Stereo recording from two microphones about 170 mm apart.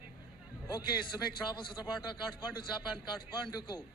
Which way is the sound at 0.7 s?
25° left (ahead or behind).